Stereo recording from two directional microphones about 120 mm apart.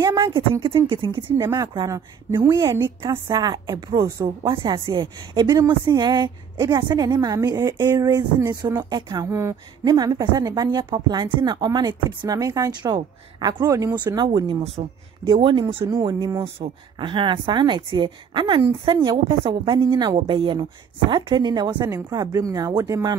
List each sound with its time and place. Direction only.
0.0 s a woman's voice: 40° right (ahead or behind)
1.4 s speech: 30° right (ahead or behind)
3.3 s speech: 35° right (ahead or behind)
16.3 s speech: 25° right (ahead or behind)
16.6 s speech: 45° right (ahead or behind); by 23.1 s 30° right (ahead or behind)